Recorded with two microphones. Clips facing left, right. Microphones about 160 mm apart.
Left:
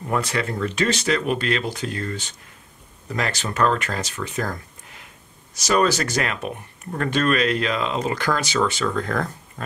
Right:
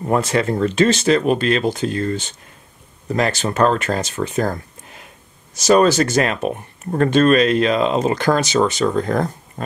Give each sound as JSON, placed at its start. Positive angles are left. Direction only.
{"t": 0.0, "sound": "speech", "side_deg": -30}
{"t": 5.6, "sound": "speech", "side_deg": -25}